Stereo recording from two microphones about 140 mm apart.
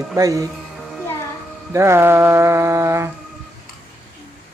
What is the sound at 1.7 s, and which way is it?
A man's voice, 20° right (ahead or behind).